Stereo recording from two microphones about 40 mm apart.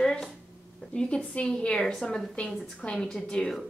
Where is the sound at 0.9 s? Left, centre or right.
Left.